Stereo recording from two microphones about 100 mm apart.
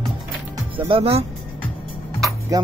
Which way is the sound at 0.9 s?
75° right (ahead or behind).